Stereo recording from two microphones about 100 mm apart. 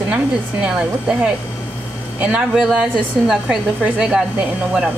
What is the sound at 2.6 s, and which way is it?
A woman's voice, 5° right (ahead or behind).